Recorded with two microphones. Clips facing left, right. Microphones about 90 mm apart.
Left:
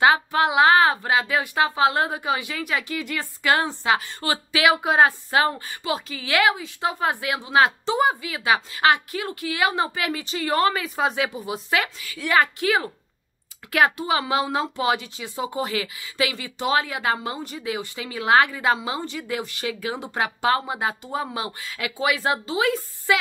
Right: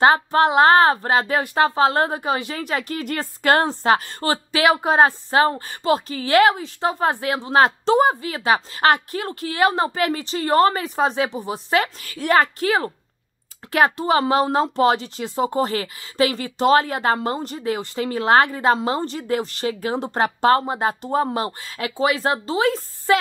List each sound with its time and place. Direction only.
0.0 s speech: 40° right (ahead or behind)
11.7 s speech: 40° right (ahead or behind)